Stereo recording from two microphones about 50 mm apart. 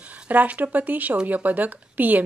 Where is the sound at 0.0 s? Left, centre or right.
Right.